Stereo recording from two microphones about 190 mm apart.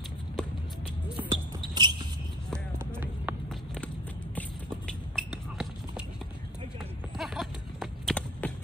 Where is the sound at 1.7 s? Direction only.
25° right (ahead or behind).